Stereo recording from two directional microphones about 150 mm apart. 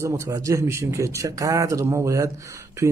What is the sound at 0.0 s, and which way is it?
A man's voice, 20° right (ahead or behind).